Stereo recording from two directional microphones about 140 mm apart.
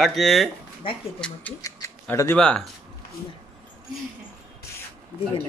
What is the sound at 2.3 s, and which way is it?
Speech, 5° left (ahead or behind).